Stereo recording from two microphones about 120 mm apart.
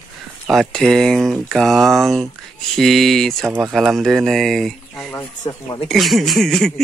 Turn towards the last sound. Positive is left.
turn(degrees=5)  # may be behind; listen again after turning